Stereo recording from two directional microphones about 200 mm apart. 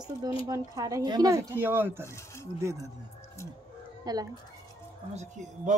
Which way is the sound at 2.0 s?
15° left (ahead or behind).